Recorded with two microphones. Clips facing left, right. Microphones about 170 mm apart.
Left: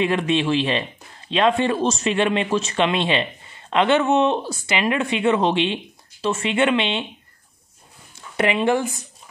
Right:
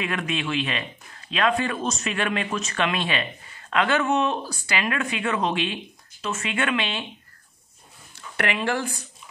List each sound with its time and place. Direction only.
0.0 s speech: 30° left (ahead or behind)
8.4 s speech: 20° left (ahead or behind)